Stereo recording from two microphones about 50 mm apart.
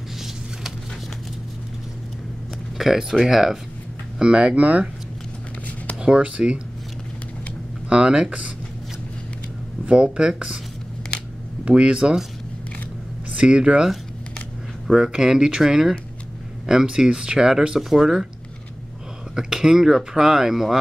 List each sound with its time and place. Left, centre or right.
2.8 s speech: centre
4.2 s speech: centre
5.9 s speech: centre
7.9 s speech: centre
9.8 s speech: right
11.6 s speech: right
13.4 s speech: centre
14.9 s speech: centre
19.3 s speech: centre